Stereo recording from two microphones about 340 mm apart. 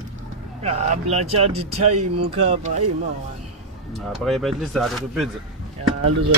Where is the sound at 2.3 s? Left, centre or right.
Centre.